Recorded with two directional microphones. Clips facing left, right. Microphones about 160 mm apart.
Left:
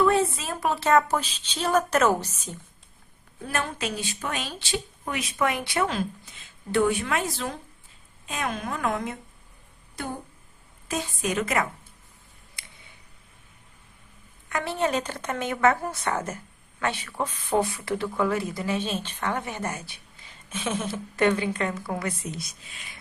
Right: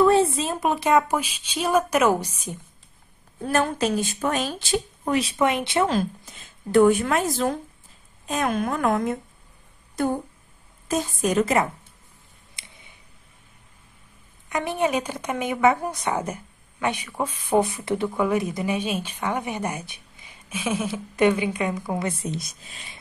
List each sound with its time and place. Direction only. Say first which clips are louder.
0.0 s speech: right 4 dB; 30° right (ahead or behind); by 2.6 s 15° right (ahead or behind)
3.4 s a woman's voice: right 7 dB; 40° right (ahead or behind); by 5.9 s 25° right (ahead or behind)
5.9 s a woman's voice: right 5 dB; 40° right (ahead or behind)
12.6 s a sound: right 1 dB; 20° right (ahead or behind)
14.5 s speech: right 2 dB; 15° right (ahead or behind)